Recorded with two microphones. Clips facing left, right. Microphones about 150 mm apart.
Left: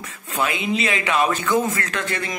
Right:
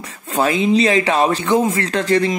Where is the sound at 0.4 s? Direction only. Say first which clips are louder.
Right 8 dB; 35° right (ahead or behind).